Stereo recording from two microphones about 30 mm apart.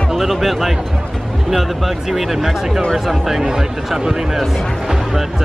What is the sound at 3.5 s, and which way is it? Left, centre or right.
Speech, centre.